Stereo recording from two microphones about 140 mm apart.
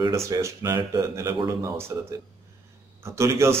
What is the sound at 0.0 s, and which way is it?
A man's voice, 20° right (ahead or behind).